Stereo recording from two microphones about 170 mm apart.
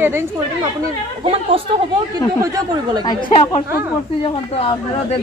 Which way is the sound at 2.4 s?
20° right (ahead or behind).